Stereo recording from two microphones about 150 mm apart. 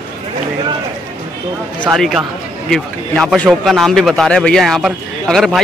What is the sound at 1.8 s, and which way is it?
A man's voice, centre (ahead or behind).